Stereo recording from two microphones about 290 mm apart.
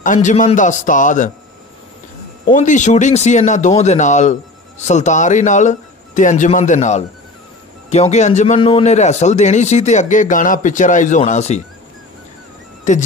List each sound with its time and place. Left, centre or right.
0.0 s a man's voice: left
2.5 s a man's voice: left
12.9 s a man's voice: left